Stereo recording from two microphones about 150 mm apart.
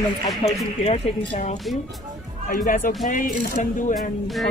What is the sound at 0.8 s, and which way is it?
Speech, 45° left (ahead or behind).